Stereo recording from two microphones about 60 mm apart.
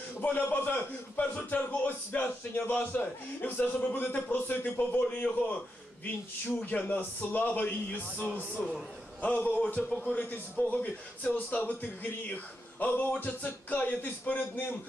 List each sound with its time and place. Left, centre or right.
0.2 s a man's voice: left
6.6 s a man's voice: left
9.2 s a man's voice: left
9.8 s a man's voice: centre
10.7 s a man's voice: left